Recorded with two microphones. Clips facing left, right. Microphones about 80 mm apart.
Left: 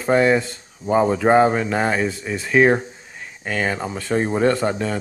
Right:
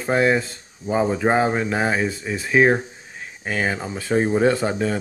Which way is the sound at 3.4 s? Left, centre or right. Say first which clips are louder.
Left 1 dB; centre.